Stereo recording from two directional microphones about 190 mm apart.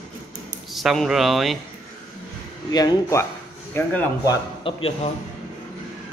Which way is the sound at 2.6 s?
20° left (ahead or behind).